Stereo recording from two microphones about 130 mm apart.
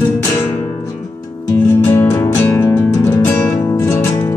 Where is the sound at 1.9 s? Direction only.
20° left (ahead or behind).